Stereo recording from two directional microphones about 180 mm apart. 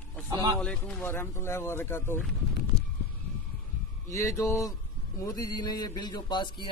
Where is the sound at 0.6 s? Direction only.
5° left (ahead or behind).